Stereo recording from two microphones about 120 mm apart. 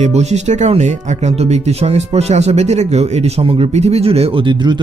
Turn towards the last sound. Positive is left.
turn(degrees=-40)  # may be behind; listen again after turning